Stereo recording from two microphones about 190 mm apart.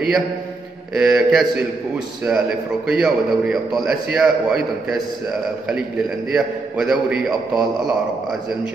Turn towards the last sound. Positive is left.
turn(degrees=0)  # may be behind; listen again after turning